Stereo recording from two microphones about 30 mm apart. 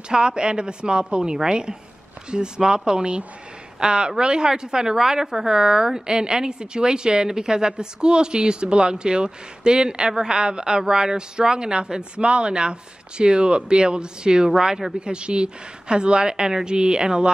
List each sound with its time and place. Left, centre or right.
0.1 s speech: right; by 5.6 s centre
5.6 s speech: right
15.0 s speech: right